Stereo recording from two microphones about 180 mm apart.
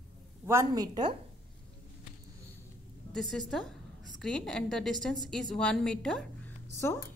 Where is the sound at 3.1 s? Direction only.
Centre (ahead or behind).